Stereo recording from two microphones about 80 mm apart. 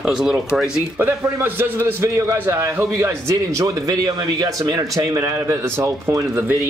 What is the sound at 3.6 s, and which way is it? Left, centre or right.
Speech, right.